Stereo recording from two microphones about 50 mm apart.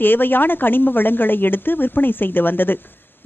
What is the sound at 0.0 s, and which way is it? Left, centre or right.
A woman's voice, left.